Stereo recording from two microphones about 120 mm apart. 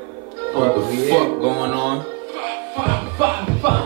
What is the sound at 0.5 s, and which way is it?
Music, 30° right (ahead or behind).